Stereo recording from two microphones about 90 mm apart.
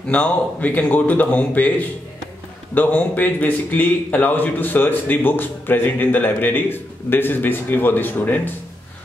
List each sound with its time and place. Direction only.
0.1 s a man's voice: 15° left (ahead or behind)